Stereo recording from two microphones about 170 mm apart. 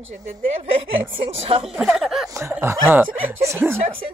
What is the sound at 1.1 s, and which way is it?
Speech, 30° right (ahead or behind).